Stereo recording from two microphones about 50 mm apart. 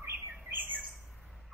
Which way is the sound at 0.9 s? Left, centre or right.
Centre.